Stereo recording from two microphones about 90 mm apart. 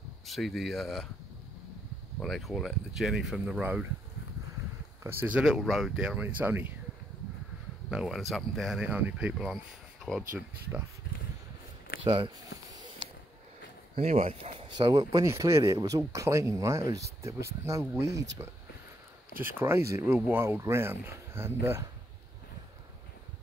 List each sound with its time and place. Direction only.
0.3 s speech: centre (ahead or behind)
2.1 s speech: centre (ahead or behind)
5.0 s speech: 20° right (ahead or behind)
5.4 s speech: 5° right (ahead or behind)
6.2 s speech: 20° right (ahead or behind)
7.9 s speech: 5° right (ahead or behind)
8.8 s speech: 15° right (ahead or behind)
9.3 s speech: 5° right (ahead or behind)
12.0 s speech: 70° right (ahead or behind)
14.7 s speech: 50° right (ahead or behind)
15.2 s speech: 35° right (ahead or behind)